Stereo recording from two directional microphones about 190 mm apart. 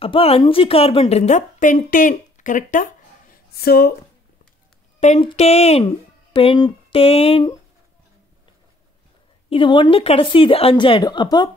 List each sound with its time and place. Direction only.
0.0 s a woman's voice: 30° left (ahead or behind)
3.5 s speech: 55° left (ahead or behind)
5.0 s a woman's voice: 35° left (ahead or behind)
9.5 s speech: 25° left (ahead or behind)